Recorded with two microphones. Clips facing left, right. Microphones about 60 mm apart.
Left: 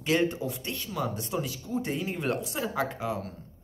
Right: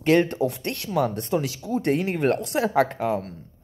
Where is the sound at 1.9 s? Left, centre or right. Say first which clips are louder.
Right 10 dB; right.